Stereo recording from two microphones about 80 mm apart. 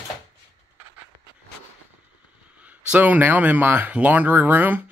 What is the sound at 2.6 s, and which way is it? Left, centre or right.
Speech, centre.